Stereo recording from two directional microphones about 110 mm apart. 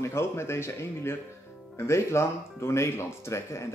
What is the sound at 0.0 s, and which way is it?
Speech, 25° left (ahead or behind).